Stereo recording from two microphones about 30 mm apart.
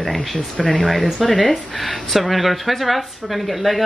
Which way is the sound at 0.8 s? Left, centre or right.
Centre.